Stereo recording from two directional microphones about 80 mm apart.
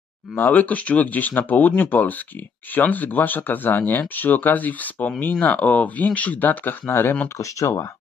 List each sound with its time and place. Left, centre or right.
0.4 s speech: left